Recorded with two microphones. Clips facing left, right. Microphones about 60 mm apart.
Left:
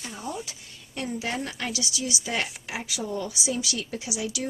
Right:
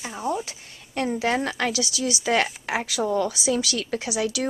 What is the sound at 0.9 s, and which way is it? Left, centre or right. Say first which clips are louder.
A woman's voice: right 7 dB; right.